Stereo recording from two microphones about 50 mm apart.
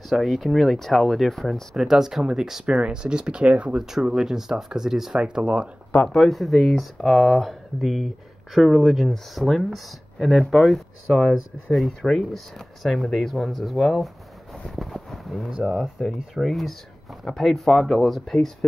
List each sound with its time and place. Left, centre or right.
0.1 s speech: centre
1.9 s speech: centre; by 3.7 s right
3.7 s speech: centre
5.2 s speech: right
6.0 s speech: centre
10.5 s speech: centre